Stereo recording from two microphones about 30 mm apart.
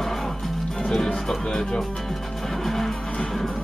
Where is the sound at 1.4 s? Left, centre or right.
Left.